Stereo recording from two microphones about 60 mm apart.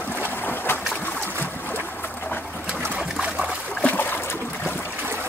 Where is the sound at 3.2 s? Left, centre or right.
Centre.